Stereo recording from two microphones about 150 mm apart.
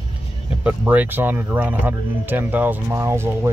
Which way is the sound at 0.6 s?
10° right (ahead or behind).